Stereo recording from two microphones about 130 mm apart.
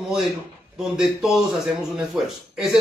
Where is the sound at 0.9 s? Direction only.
Centre (ahead or behind).